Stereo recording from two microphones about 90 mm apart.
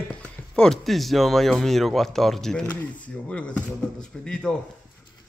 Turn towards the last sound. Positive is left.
turn(degrees=10)  # may be behind; listen again after turning